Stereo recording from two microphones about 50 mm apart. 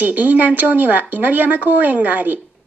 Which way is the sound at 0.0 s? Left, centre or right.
Right.